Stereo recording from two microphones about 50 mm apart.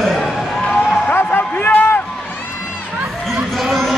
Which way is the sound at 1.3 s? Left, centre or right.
Left.